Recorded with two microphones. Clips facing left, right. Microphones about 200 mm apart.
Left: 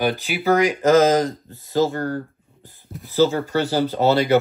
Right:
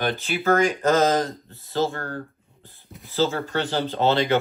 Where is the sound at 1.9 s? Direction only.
20° left (ahead or behind).